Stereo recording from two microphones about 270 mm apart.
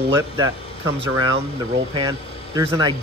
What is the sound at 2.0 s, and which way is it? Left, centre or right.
Speech, centre.